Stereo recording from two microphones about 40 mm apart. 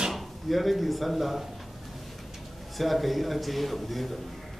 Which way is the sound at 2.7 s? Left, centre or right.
Centre.